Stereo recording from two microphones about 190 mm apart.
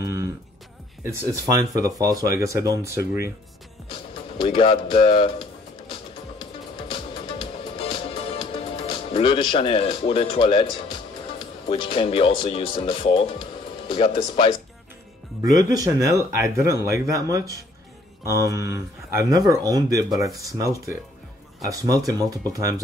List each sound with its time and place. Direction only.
0.0 s music: 15° right (ahead or behind)
1.0 s speech: 15° right (ahead or behind)
3.9 s music: 25° left (ahead or behind)
13.8 s speech: 30° left (ahead or behind)
15.5 s speech: 20° right (ahead or behind)